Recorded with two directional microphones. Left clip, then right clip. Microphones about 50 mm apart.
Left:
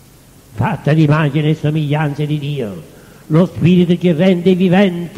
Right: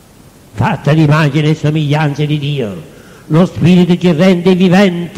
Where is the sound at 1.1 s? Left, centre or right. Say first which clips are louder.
Right 4 dB; left.